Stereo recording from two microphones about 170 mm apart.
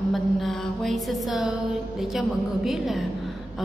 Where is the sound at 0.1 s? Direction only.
Centre (ahead or behind).